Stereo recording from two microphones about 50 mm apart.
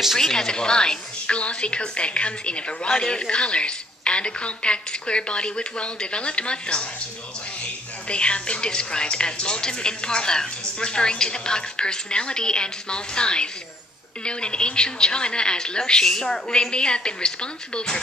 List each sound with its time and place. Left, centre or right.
0.2 s a woman's voice: centre
8.1 s a woman's voice: left